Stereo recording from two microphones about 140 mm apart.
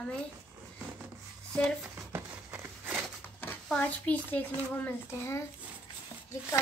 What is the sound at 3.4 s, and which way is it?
A child's voice, 10° left (ahead or behind).